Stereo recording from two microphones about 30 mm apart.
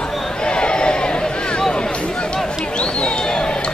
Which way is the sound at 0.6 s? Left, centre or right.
Left.